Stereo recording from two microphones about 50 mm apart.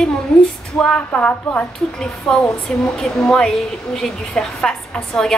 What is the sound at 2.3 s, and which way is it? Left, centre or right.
A woman's voice, centre.